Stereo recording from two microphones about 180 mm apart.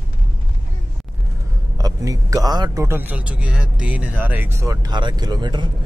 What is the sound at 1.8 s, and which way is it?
A man's voice, 20° right (ahead or behind).